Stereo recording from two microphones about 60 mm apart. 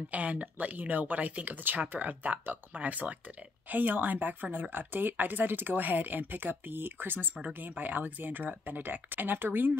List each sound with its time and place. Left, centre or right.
0.1 s a woman's voice: right